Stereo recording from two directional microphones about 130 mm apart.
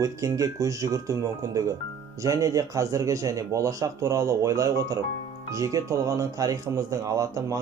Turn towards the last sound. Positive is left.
turn(degrees=-25)  # may be behind; listen again after turning